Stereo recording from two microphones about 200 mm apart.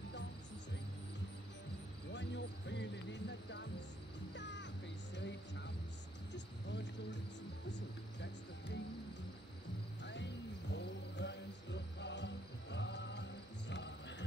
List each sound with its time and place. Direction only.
2.1 s basketball bounce: 60° left (ahead or behind)
4.4 s music: 60° left (ahead or behind)
5.1 s a sound: 60° left (ahead or behind)
10.7 s music: 60° left (ahead or behind)